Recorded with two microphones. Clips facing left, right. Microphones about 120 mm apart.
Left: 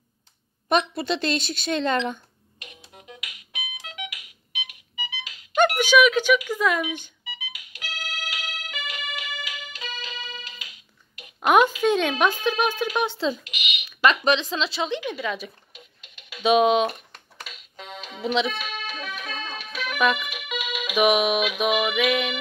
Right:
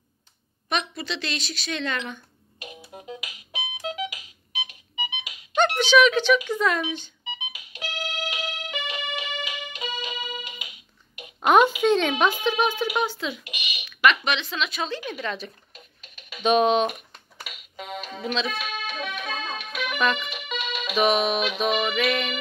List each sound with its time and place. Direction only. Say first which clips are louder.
0.7 s a woman's voice: left 6 dB; 45° left (ahead or behind)
2.6 s music: right 7 dB; 25° right (ahead or behind)
5.8 s speech: right 3 dB; 10° left (ahead or behind)
7.2 s music: right 3 dB; 25° right (ahead or behind)
11.6 s speech: even; 15° right (ahead or behind)
11.9 s speech: even; 10° left (ahead or behind)
12.7 s speech: even; 15° right (ahead or behind)
13.0 s speech: left 3 dB; 25° left (ahead or behind)
13.4 s a sound: left 2 dB; 30° right (ahead or behind)
14.0 s a woman's voice: left 2 dB; 35° left (ahead or behind)
15.1 s speech: left 2 dB; 10° left (ahead or behind)
16.3 s music: left 1 dB; 5° left (ahead or behind)
18.2 s speech: left 5 dB; 20° left (ahead or behind)
18.6 s music: right 2 dB; centre (ahead or behind)